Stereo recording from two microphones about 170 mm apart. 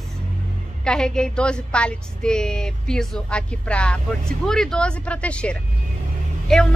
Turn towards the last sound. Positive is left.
turn(degrees=5)  # may be behind; listen again after turning